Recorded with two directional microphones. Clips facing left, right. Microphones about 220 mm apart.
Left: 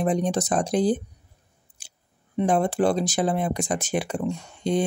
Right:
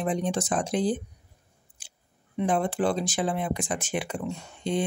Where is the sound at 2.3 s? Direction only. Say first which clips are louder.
Left 4 dB; 40° left (ahead or behind).